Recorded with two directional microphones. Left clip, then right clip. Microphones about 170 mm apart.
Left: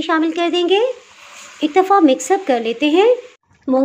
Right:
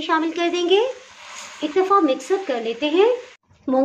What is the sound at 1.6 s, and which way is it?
Speech, 45° left (ahead or behind).